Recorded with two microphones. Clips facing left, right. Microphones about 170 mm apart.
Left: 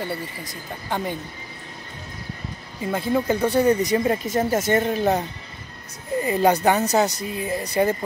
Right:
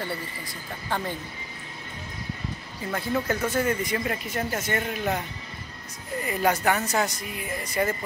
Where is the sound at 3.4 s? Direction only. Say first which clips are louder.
Left 7 dB; 35° left (ahead or behind).